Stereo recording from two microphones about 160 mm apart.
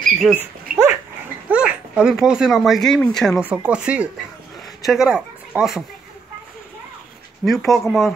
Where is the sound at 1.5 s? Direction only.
5° right (ahead or behind).